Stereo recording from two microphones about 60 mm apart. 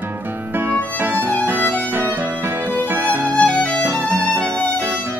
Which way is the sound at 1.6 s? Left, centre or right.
Left.